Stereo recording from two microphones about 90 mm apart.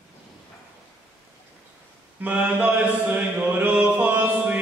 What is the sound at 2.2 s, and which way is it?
Mantra, 15° right (ahead or behind).